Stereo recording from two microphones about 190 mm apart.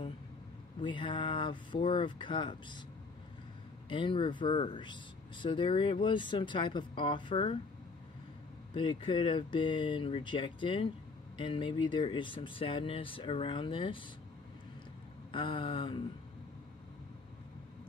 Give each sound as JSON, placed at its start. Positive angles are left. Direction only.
{"t": 0.7, "sound": "speech", "side_deg": 25}
{"t": 3.9, "sound": "speech", "side_deg": 25}
{"t": 8.7, "sound": "speech", "side_deg": 25}
{"t": 15.3, "sound": "speech", "side_deg": 25}